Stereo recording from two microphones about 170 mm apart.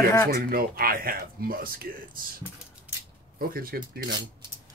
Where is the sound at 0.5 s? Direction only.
60° right (ahead or behind).